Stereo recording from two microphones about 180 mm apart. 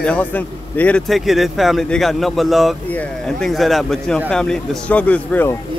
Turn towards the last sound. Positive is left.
turn(degrees=10)  # may be behind; listen again after turning